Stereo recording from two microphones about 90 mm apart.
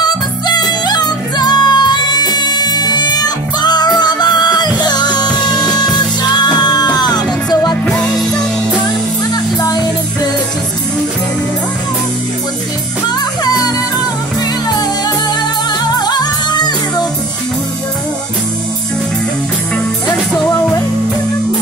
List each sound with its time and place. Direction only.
0.0 s music: 50° left (ahead or behind)
7.8 s music: 15° left (ahead or behind)
9.3 s music: 45° left (ahead or behind)
13.4 s music: 50° left (ahead or behind)
14.7 s music: 50° left (ahead or behind)